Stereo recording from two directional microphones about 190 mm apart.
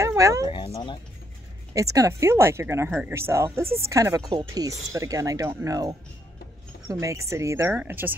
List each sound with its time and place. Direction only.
0.0 s cat: 15° right (ahead or behind)
0.5 s speech: 25° left (ahead or behind)
1.7 s speech: 15° right (ahead or behind)